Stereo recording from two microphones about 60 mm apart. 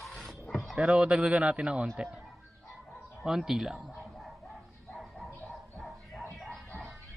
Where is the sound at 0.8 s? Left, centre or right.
Centre.